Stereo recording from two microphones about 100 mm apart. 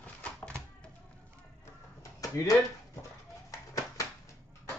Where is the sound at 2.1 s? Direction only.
35° left (ahead or behind).